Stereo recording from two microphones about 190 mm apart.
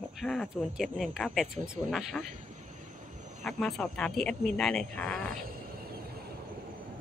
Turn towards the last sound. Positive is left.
turn(degrees=5)  # may be behind; listen again after turning